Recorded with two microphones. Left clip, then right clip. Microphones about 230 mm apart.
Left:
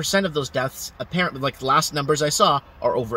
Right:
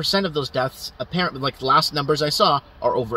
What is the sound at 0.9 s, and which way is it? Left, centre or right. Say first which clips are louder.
Speech: even; centre.